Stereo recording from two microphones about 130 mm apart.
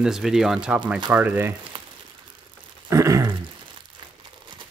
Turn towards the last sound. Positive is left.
turn(degrees=-25)  # may be behind; listen again after turning